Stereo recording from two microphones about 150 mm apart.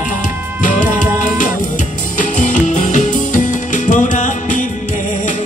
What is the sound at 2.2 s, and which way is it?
Music, 60° left (ahead or behind).